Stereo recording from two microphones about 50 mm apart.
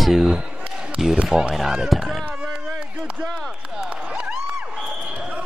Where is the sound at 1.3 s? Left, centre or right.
Centre.